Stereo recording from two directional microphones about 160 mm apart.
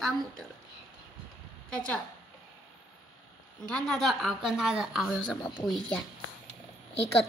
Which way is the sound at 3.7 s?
5° left (ahead or behind).